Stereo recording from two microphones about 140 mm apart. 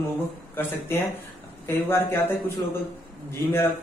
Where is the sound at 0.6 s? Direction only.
15° left (ahead or behind).